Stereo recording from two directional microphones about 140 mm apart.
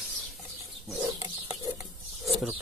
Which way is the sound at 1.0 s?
25° right (ahead or behind).